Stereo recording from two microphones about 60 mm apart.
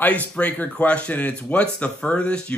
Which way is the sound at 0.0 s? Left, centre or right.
Left.